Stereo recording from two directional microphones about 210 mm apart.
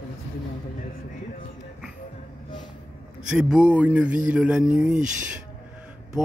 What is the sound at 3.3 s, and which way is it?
Speech, 5° right (ahead or behind).